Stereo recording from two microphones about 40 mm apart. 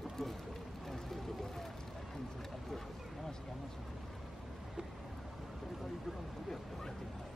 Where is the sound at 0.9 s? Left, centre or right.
Centre.